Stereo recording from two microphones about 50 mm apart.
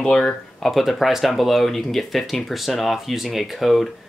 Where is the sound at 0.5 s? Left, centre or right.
Centre.